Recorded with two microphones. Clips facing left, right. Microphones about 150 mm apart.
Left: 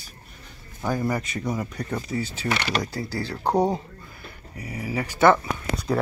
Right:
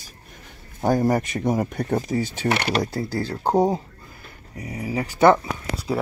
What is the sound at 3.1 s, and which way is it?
Speech, 45° right (ahead or behind).